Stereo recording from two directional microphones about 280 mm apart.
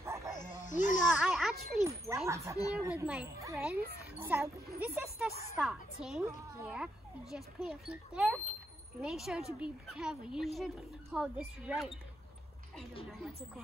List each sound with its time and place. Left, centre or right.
0.0 s snake: centre
0.7 s a sound: left
1.0 s a child's voice: centre